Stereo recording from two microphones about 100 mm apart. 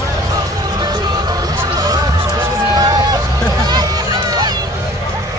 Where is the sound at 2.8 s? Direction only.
40° right (ahead or behind).